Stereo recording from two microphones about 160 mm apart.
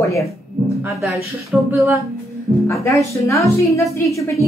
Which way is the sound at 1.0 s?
Centre (ahead or behind).